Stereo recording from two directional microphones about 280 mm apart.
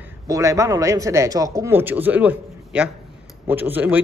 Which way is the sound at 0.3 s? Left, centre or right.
Centre.